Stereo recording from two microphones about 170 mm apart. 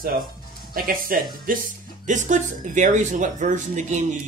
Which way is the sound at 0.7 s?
55° right (ahead or behind).